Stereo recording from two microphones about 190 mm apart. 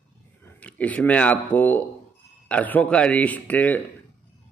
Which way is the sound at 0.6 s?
5° left (ahead or behind).